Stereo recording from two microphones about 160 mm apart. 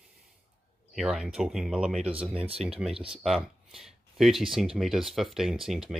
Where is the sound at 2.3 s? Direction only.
35° right (ahead or behind).